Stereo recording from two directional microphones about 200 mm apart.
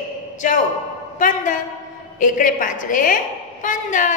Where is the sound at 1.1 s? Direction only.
40° left (ahead or behind).